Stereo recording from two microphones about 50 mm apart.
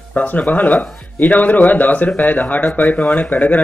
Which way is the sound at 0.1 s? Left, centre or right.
Left.